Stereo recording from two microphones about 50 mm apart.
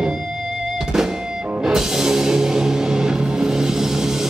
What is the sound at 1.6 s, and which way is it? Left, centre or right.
Music, centre.